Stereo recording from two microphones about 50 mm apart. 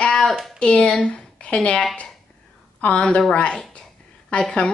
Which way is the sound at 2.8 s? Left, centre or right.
Left.